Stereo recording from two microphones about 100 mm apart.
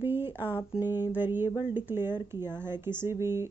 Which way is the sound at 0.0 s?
20° right (ahead or behind).